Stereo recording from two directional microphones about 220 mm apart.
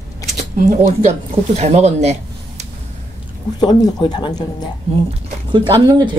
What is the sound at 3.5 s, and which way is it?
Speech, 20° left (ahead or behind).